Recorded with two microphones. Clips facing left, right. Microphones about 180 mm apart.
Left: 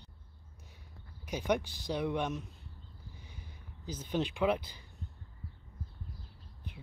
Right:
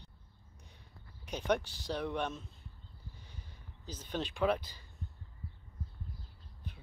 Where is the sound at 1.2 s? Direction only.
10° left (ahead or behind).